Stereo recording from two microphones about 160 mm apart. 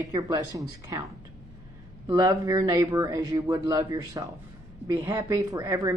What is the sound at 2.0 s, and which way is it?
Speech, 20° right (ahead or behind).